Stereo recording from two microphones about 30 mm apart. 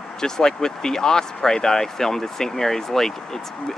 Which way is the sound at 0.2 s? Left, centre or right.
Left.